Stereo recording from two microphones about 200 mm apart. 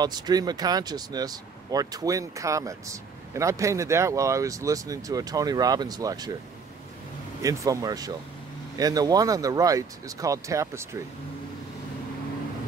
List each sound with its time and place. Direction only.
0.0 s speech: 20° right (ahead or behind)
7.4 s speech: 15° right (ahead or behind)